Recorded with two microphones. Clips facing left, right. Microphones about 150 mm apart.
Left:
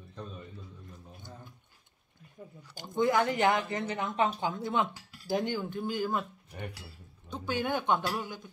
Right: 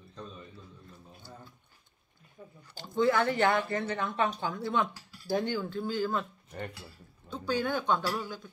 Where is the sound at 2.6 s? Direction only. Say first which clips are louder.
Right 1 dB; 15° left (ahead or behind).